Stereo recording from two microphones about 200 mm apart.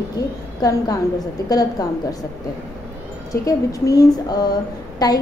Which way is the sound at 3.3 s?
15° left (ahead or behind).